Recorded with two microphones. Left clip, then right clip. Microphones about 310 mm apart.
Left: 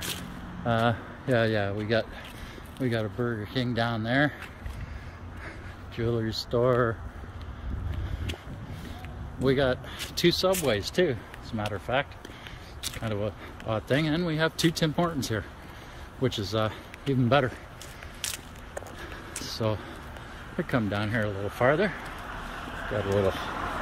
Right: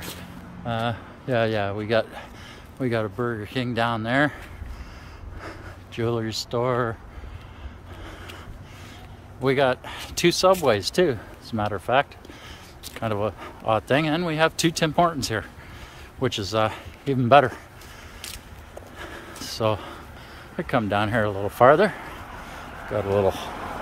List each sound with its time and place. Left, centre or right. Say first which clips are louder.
0.7 s speech: left 1 dB; centre
5.9 s speech: right 4 dB; centre
9.4 s speech: right 4 dB; centre
19.4 s a sound: right 6 dB; centre
20.5 s speech: right 6 dB; centre
22.9 s speech: right 5 dB; centre